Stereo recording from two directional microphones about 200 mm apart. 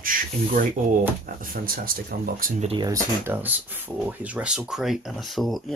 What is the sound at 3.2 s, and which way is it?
Speech, 10° right (ahead or behind).